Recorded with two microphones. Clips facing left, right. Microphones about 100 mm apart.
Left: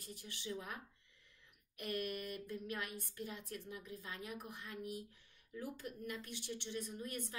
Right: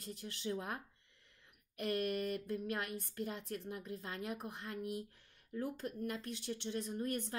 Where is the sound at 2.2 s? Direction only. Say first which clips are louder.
Right 6 dB; 45° right (ahead or behind).